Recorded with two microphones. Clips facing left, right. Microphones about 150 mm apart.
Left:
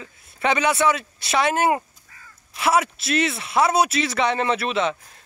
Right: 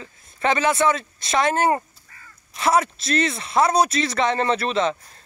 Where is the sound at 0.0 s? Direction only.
5° left (ahead or behind).